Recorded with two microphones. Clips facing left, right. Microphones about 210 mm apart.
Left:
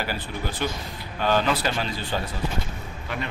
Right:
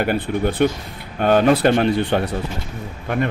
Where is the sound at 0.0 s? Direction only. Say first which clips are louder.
Right 11 dB; 60° right (ahead or behind).